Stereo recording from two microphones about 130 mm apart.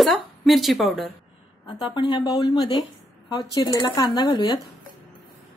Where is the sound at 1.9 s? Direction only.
35° left (ahead or behind).